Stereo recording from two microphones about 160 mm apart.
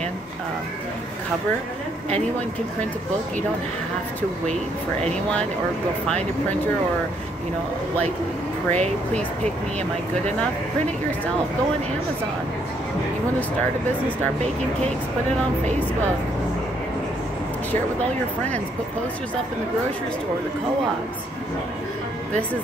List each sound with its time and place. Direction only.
8.7 s speech: 45° right (ahead or behind)